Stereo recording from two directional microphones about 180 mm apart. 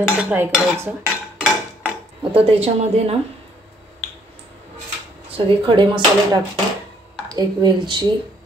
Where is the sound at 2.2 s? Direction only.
30° right (ahead or behind).